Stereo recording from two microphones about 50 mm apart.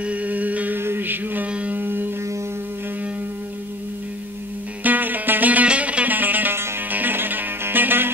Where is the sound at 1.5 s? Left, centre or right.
Right.